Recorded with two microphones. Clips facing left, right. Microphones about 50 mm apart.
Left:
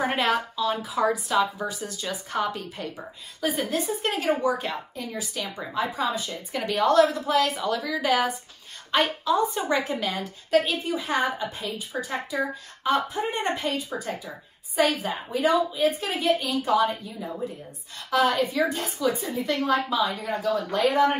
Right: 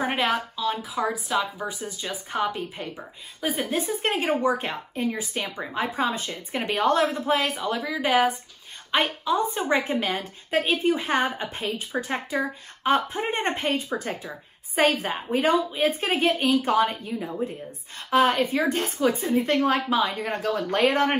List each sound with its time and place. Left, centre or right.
0.0 s a woman's voice: centre
1.7 s a woman's voice: right